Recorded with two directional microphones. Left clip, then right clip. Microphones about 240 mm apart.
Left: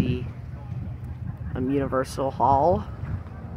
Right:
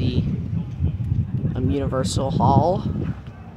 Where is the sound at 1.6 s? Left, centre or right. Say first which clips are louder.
Even; centre.